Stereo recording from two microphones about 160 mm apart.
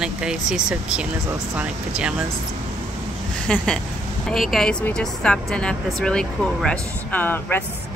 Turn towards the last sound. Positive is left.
turn(degrees=15)  # may be behind; listen again after turning